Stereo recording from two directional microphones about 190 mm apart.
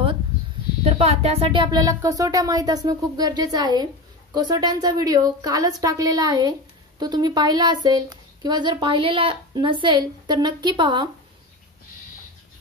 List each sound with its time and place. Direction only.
0.8 s a woman's voice: 35° right (ahead or behind)